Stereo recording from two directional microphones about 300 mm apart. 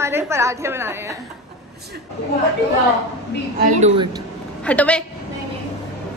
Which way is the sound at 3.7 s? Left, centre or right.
Right.